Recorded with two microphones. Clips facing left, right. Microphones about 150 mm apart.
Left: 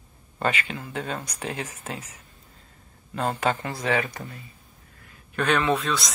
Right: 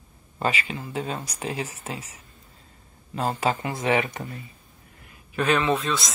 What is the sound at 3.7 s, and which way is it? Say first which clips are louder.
Speech: right 2 dB; 20° right (ahead or behind).